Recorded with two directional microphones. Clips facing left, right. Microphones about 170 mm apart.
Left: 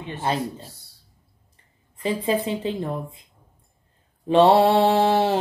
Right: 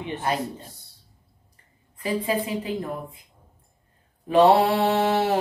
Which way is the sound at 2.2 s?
25° left (ahead or behind).